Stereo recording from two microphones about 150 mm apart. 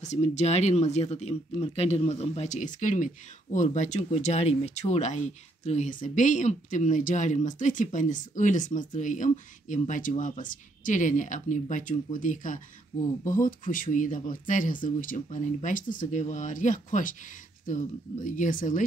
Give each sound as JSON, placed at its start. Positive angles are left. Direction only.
{"t": 0.0, "sound": "speech", "side_deg": 50}